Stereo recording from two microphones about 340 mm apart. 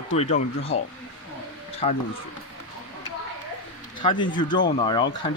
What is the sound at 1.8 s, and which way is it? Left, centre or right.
Speech, centre.